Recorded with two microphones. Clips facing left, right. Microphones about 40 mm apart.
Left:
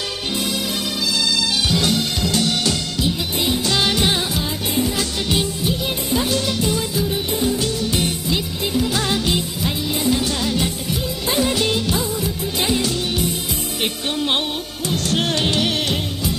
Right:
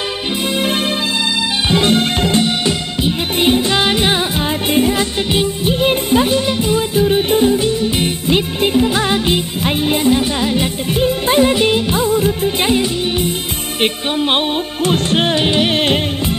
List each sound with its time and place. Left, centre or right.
1.7 s music: right
3.3 s music: right
3.6 s music: right
4.7 s music: right
5.3 s music: right
5.8 s music: right
6.3 s music: right
7.5 s music: right
9.6 s music: right
10.1 s music: right
10.9 s music: right
11.5 s music: right
12.7 s music: right